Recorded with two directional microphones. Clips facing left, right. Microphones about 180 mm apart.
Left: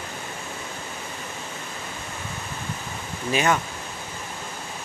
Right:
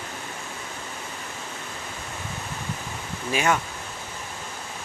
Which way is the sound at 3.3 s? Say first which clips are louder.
Left 1 dB; 5° right (ahead or behind).